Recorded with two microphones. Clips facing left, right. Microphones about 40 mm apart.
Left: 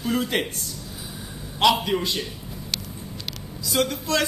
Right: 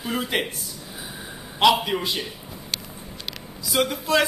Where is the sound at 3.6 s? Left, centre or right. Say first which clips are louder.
Right 1 dB; centre.